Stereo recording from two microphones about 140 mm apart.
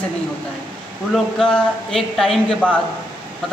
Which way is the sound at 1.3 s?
5° left (ahead or behind).